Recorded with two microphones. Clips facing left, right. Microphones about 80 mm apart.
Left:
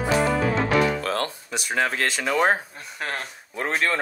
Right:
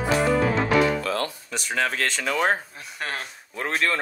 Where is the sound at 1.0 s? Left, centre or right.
Left.